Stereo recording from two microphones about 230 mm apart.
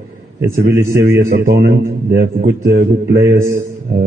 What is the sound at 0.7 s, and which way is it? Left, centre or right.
Speech, centre.